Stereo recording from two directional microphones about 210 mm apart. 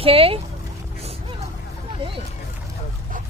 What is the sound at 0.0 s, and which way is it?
Speech, 25° right (ahead or behind).